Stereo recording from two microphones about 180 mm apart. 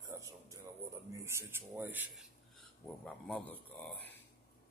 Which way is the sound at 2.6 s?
5° left (ahead or behind).